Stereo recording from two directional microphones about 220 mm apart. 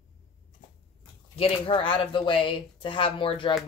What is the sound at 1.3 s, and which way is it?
Speech, 25° left (ahead or behind).